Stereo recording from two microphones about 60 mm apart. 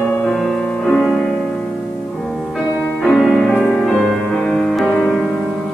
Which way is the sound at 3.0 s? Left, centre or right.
Centre.